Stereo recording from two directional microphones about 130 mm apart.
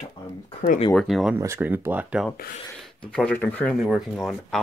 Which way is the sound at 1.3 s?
20° right (ahead or behind).